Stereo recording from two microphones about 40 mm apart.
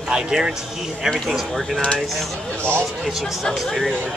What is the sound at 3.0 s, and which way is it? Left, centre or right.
Speech, centre.